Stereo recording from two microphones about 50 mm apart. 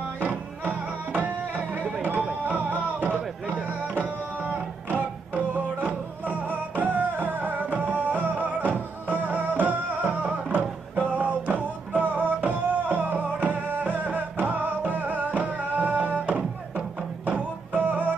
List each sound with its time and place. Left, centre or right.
0.2 s music: right